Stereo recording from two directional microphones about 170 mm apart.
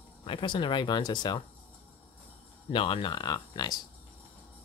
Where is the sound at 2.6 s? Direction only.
30° left (ahead or behind).